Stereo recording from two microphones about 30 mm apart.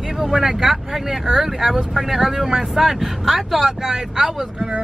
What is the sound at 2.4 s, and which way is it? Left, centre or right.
Speech, right.